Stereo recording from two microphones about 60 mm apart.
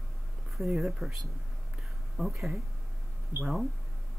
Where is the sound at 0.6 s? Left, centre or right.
Centre.